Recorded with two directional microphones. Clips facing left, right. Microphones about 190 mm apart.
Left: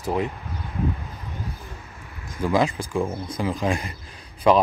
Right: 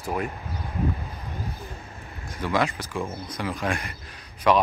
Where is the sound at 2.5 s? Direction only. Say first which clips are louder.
Left 4 dB; 30° left (ahead or behind).